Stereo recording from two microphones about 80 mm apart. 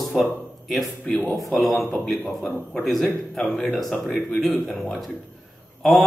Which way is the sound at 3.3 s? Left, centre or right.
Centre.